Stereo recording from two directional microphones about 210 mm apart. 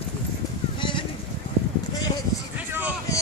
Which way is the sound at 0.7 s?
25° left (ahead or behind).